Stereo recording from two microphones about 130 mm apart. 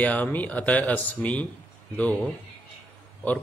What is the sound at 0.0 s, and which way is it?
Speech, 10° left (ahead or behind).